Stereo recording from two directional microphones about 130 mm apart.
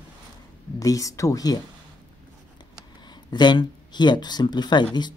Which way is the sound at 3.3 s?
35° left (ahead or behind).